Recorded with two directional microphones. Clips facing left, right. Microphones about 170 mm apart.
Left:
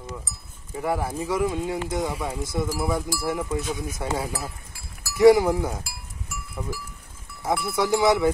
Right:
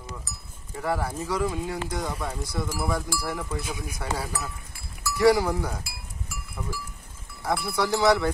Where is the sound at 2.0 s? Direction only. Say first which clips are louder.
Left 3 dB; 10° left (ahead or behind).